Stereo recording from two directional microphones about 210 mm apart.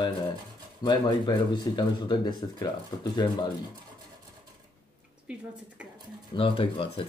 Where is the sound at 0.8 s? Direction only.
20° left (ahead or behind).